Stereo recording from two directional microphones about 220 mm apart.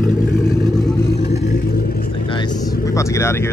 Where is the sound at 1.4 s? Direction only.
45° left (ahead or behind).